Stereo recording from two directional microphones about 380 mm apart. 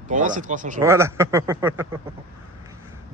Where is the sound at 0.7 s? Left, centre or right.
Centre.